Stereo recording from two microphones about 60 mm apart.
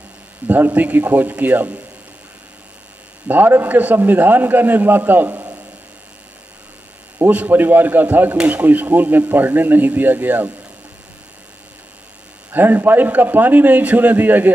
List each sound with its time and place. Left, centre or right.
0.5 s speech: right
3.3 s speech: right
7.2 s speech: right
12.4 s speech: right